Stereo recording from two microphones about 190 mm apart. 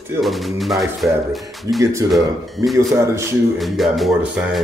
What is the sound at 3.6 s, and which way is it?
Speech, centre (ahead or behind).